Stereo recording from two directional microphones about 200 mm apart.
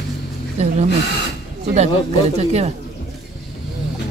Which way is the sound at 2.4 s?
35° right (ahead or behind).